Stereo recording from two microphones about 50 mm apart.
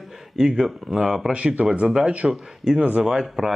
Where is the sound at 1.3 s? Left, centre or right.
Right.